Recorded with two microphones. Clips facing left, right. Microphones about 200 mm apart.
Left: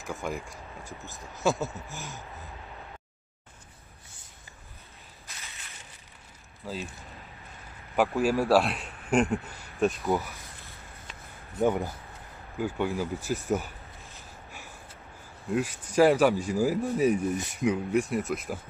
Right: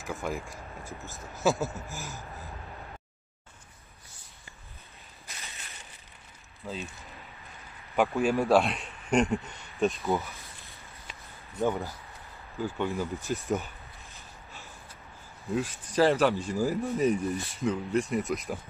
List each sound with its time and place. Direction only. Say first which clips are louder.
0.0 s a man's voice: even; centre (ahead or behind)
6.6 s a man's voice: left 1 dB; centre (ahead or behind)
10.7 s a sound: left 1 dB; centre (ahead or behind)
11.6 s speech: left 3 dB; 15° left (ahead or behind)
15.9 s speech: left 3 dB; 10° left (ahead or behind)
18.1 s a man's voice: even; 5° left (ahead or behind)